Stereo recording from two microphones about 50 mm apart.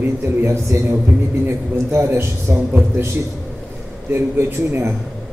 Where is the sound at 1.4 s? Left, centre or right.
Right.